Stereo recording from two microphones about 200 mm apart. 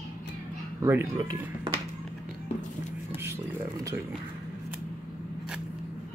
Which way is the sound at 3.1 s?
10° right (ahead or behind).